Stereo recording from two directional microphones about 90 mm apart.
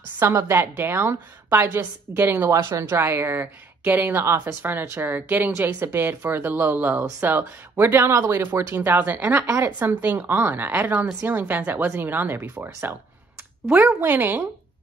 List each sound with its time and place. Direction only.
0.2 s speech: 30° right (ahead or behind)